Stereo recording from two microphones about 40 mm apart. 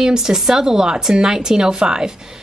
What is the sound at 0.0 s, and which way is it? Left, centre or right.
A man's voice, centre.